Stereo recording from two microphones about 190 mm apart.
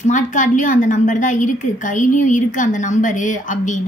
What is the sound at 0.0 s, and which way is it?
A woman's voice, 40° left (ahead or behind).